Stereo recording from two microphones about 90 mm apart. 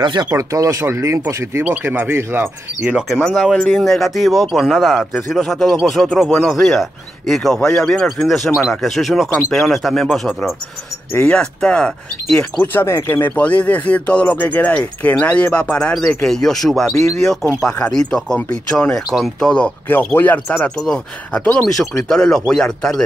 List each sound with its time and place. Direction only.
0.0 s speech: 55° right (ahead or behind)
0.4 s speech: 40° right (ahead or behind)
1.6 s speech: 20° right (ahead or behind)
3.3 s speech: centre (ahead or behind)
11.1 s speech: 10° left (ahead or behind)
12.7 s speech: 30° left (ahead or behind)
13.3 s speech: 15° left (ahead or behind)
20.2 s speech: 20° left (ahead or behind)